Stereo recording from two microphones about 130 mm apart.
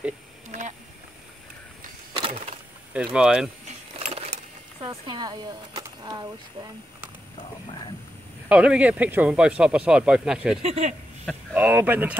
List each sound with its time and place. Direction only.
0.5 s a sound: 70° right (ahead or behind)
2.1 s a sound: 45° right (ahead or behind)
3.1 s speech: 5° right (ahead or behind)
3.6 s keys jangling: 60° right (ahead or behind)
4.8 s speech: 40° right (ahead or behind)
8.5 s speech: 10° right (ahead or behind)
10.6 s speech: 55° right (ahead or behind)
11.5 s speech: 15° right (ahead or behind)